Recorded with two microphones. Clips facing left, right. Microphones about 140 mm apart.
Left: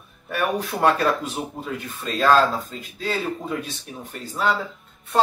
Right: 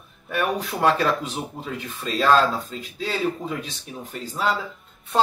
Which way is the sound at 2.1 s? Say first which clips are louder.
Left 1 dB; centre (ahead or behind).